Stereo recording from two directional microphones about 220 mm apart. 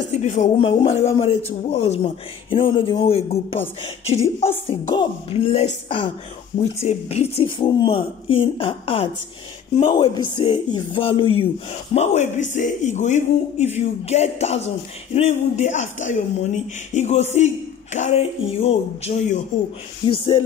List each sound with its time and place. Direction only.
0.2 s a woman's voice: 30° left (ahead or behind)